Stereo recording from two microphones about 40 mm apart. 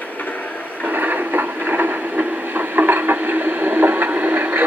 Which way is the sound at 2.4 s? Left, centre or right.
Right.